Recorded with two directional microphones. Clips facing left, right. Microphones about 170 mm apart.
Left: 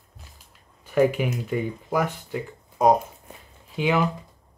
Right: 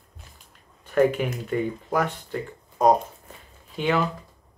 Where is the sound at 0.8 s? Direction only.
10° left (ahead or behind).